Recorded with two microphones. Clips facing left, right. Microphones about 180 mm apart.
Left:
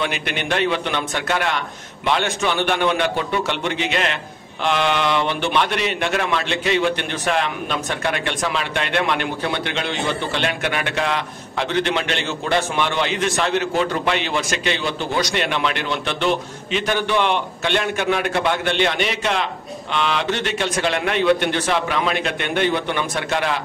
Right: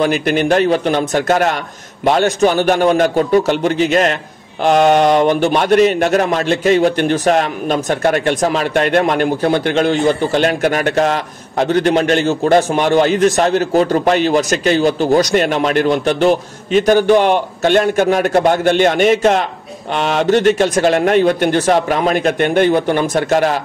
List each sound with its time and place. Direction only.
0.0 s a man's voice: 40° right (ahead or behind)